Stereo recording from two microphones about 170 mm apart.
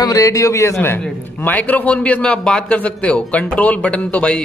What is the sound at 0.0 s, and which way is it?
A man's voice, 20° left (ahead or behind).